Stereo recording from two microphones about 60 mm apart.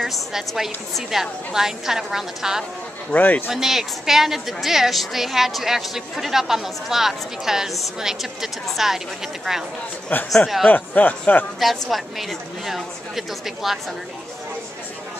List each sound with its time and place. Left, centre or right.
0.0 s a woman's voice: centre
3.1 s speech: left
3.4 s a woman's voice: centre
10.3 s a woman's voice: centre
10.7 s speech: left
11.6 s a woman's voice: centre